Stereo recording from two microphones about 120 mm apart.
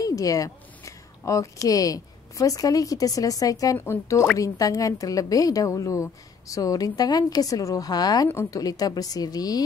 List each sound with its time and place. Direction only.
0.0 s a woman's voice: 30° left (ahead or behind)